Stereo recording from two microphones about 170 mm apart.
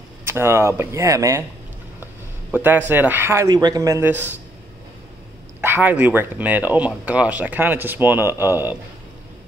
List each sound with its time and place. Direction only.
0.2 s speech: 15° right (ahead or behind)
2.5 s speech: 10° right (ahead or behind)
5.6 s speech: 10° right (ahead or behind)